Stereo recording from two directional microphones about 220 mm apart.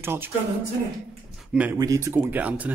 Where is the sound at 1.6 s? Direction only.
10° right (ahead or behind).